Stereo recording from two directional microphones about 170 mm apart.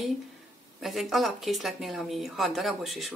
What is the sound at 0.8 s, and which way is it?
Speech, centre (ahead or behind).